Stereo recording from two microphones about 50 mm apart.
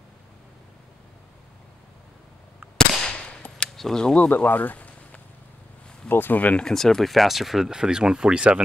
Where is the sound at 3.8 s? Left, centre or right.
Centre.